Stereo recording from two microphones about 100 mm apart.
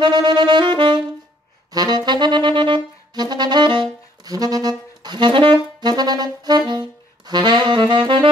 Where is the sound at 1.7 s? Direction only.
45° right (ahead or behind).